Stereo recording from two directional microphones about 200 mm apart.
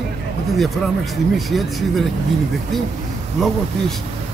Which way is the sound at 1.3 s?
Centre (ahead or behind).